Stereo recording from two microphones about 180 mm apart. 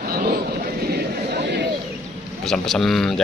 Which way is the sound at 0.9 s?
65° right (ahead or behind).